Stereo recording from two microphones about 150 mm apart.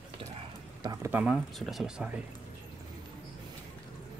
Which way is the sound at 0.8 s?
25° right (ahead or behind).